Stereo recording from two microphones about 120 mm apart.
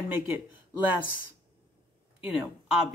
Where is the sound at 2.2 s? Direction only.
10° right (ahead or behind).